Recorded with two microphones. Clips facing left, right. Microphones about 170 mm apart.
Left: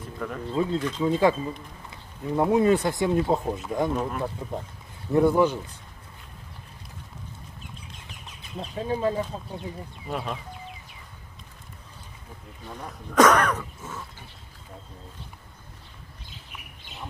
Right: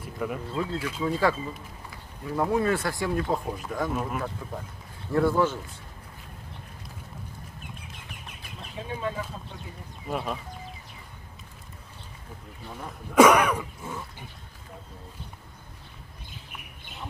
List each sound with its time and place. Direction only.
0.2 s speech: 10° right (ahead or behind)
1.0 s speech: 20° left (ahead or behind)
3.9 s speech: 5° right (ahead or behind)
4.4 s speech: 25° left (ahead or behind)
8.8 s speech: 35° left (ahead or behind)
10.0 s speech: centre (ahead or behind)
12.6 s speech: 5° right (ahead or behind)